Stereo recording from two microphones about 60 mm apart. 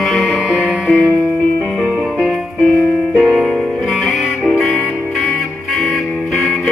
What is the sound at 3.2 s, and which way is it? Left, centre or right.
Music, centre.